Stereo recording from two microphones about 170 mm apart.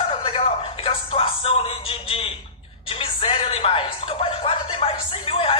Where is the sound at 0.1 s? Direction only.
35° left (ahead or behind).